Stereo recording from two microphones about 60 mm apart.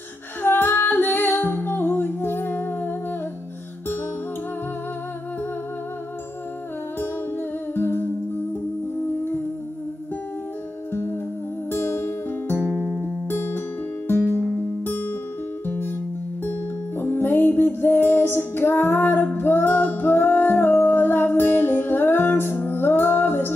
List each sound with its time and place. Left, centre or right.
0.4 s music: left
7.7 s humming: left
10.9 s music: left
17.0 s music: left